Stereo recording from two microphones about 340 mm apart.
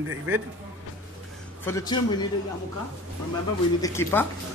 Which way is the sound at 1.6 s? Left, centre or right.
Centre.